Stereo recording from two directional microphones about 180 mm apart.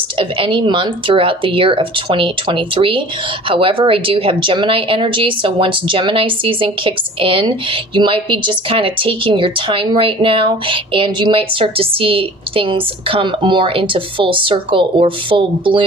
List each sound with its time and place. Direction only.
0.2 s speech: 25° right (ahead or behind)